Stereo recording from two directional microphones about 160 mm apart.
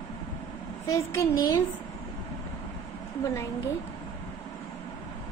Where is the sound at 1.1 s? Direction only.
20° left (ahead or behind).